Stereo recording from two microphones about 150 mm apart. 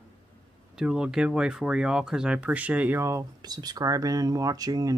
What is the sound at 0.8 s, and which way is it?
Speech, 5° right (ahead or behind).